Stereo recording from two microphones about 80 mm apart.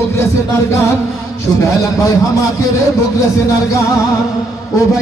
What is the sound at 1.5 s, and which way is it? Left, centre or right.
A man's voice, left.